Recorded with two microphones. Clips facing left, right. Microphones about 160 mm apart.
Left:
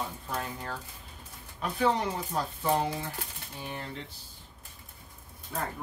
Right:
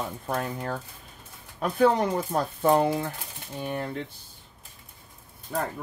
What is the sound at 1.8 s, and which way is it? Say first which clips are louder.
Speech: right 6 dB; 50° right (ahead or behind).